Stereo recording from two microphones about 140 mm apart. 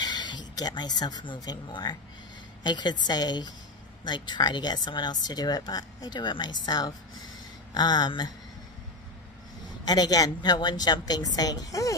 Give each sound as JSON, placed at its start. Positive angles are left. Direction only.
{"t": 0.0, "sound": "a woman's voice", "side_deg": 30}
{"t": 9.8, "sound": "speech", "side_deg": 30}